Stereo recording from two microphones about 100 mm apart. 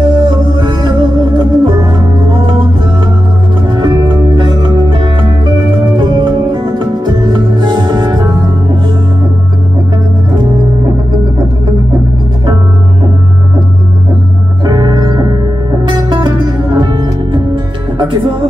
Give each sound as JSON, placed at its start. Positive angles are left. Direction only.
{"t": 0.0, "sound": "music", "side_deg": -50}
{"t": 3.6, "sound": "music", "side_deg": -50}
{"t": 14.6, "sound": "music", "side_deg": -45}